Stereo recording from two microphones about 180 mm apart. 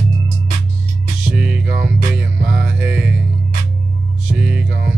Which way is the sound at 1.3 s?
5° right (ahead or behind).